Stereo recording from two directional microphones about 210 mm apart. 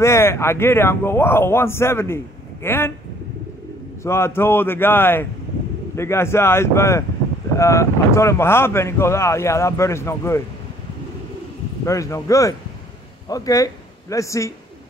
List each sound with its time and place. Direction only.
0.0 s speech: 10° left (ahead or behind)
4.0 s speech: 10° left (ahead or behind)
11.8 s a man's voice: 15° left (ahead or behind)